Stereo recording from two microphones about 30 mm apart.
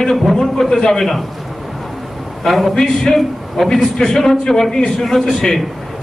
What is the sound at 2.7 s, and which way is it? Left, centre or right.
Speech, centre.